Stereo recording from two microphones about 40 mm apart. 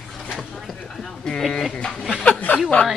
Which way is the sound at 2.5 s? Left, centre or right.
Left.